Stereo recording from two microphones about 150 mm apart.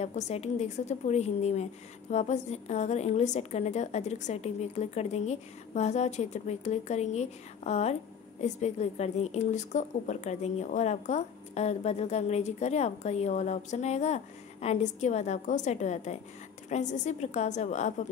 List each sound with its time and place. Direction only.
0.0 s a woman's voice: 45° left (ahead or behind)